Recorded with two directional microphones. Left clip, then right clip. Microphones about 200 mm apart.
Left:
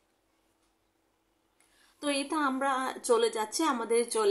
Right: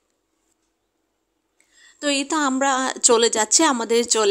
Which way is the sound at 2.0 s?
35° right (ahead or behind).